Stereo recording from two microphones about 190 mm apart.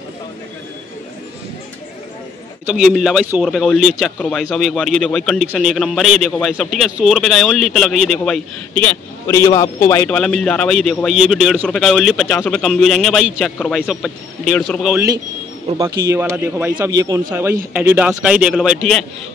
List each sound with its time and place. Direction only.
2.6 s a man's voice: 5° right (ahead or behind)
15.8 s a man's voice: 15° right (ahead or behind)